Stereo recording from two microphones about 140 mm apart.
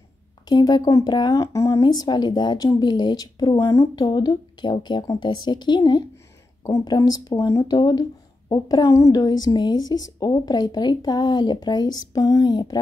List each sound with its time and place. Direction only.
0.5 s speech: 30° left (ahead or behind)